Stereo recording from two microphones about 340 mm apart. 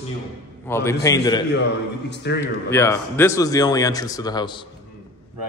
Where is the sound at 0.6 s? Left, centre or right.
Centre.